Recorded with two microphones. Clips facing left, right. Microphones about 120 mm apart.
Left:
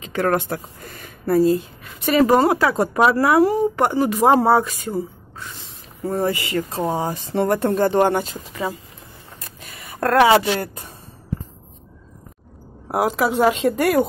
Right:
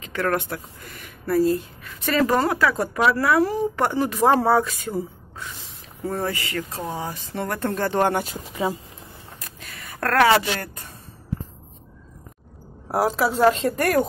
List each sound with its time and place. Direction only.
0.0 s speech: 25° left (ahead or behind)
1.4 s speech: 20° left (ahead or behind)
3.7 s speech: 10° left (ahead or behind)
6.0 s speech: 15° left (ahead or behind)
7.7 s speech: 10° left (ahead or behind)
8.2 s speech: 10° right (ahead or behind)
9.4 s a sound: 10° left (ahead or behind)
12.8 s speech: 5° left (ahead or behind)